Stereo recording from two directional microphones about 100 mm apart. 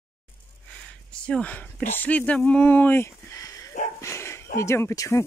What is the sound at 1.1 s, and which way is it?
Speech, 10° left (ahead or behind).